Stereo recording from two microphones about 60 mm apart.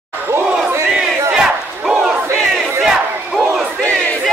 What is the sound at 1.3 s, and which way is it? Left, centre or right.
Battle cry, centre.